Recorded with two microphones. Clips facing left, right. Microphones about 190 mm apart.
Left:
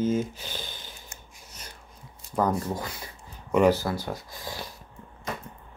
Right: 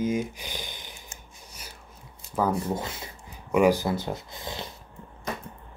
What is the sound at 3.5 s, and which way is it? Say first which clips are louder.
Speech: even; 10° right (ahead or behind).